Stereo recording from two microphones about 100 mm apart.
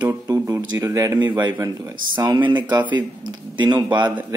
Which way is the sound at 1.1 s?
15° right (ahead or behind).